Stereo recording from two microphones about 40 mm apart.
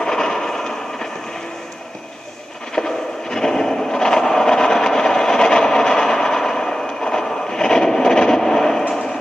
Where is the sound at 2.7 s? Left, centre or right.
Centre.